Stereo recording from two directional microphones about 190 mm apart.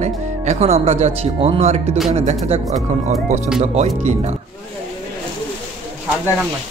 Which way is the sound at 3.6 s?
35° right (ahead or behind).